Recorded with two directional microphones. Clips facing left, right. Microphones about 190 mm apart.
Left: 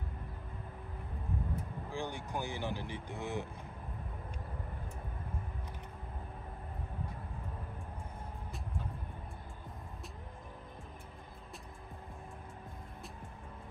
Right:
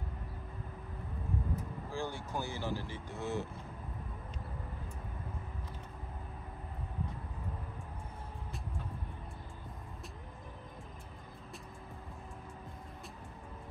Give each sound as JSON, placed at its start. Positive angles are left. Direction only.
{"t": 1.9, "sound": "speech", "side_deg": 15}